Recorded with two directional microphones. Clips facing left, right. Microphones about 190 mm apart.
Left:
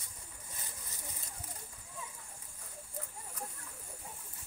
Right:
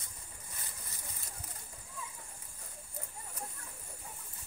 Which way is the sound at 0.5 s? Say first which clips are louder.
Left 1 dB; 15° left (ahead or behind).